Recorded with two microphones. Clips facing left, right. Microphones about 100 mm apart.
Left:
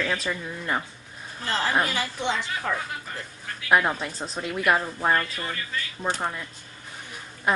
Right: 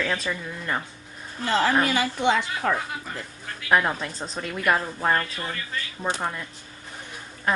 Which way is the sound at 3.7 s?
5° left (ahead or behind).